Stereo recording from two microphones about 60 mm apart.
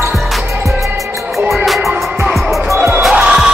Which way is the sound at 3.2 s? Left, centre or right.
Centre.